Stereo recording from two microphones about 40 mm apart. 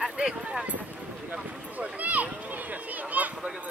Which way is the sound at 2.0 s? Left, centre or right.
Right.